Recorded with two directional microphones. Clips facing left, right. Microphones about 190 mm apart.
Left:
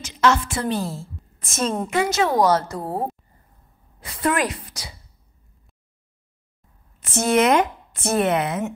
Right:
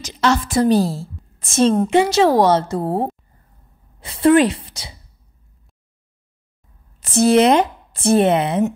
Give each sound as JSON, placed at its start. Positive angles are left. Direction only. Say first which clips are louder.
{"t": 0.0, "sound": "a woman's voice", "louder": "right 1 dB", "side_deg": -35}
{"t": 7.0, "sound": "speech", "louder": "right 6 dB", "side_deg": -35}